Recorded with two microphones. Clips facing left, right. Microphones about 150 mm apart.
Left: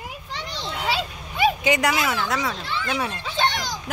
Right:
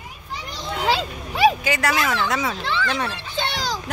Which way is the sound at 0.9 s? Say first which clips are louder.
Right 2 dB; 90° right.